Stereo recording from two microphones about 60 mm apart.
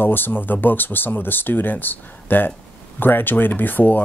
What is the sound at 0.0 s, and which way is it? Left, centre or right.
Speech, left.